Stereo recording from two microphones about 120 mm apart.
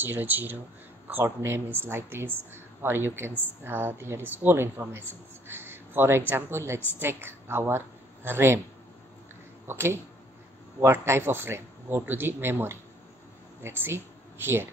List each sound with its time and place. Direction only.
0.0 s a woman's voice: 15° right (ahead or behind)
9.7 s a woman's voice: 20° right (ahead or behind)